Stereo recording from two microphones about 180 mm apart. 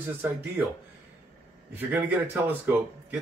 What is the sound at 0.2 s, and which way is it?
Speech, 10° right (ahead or behind).